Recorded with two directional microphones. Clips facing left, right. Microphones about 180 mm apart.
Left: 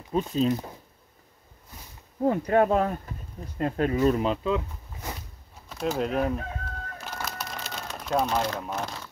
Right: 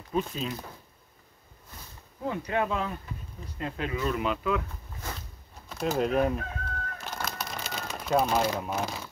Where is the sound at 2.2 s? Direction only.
45° left (ahead or behind); by 4.6 s 25° left (ahead or behind).